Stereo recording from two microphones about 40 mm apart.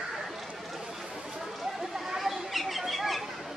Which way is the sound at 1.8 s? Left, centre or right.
Centre.